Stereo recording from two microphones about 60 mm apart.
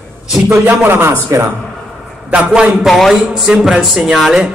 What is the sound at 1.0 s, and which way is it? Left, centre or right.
Speech, right.